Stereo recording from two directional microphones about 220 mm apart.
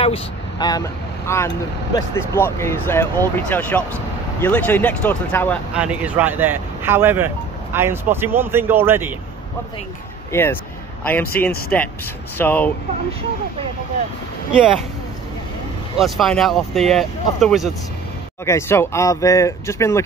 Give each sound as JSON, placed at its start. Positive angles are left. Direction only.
{"t": 0.0, "sound": "speech", "side_deg": 20}
{"t": 5.8, "sound": "speech", "side_deg": -5}
{"t": 10.3, "sound": "speech", "side_deg": 10}
{"t": 16.0, "sound": "speech", "side_deg": 0}
{"t": 18.4, "sound": "speech", "side_deg": 10}